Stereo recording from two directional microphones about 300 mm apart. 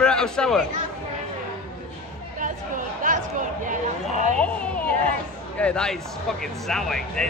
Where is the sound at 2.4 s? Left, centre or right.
Right.